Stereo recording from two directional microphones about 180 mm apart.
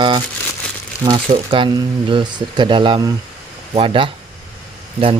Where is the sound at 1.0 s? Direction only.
25° right (ahead or behind).